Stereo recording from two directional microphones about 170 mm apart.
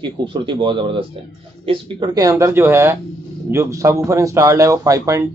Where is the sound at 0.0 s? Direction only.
30° right (ahead or behind).